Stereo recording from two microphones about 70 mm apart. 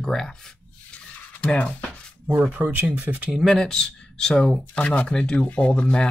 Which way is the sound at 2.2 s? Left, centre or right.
Right.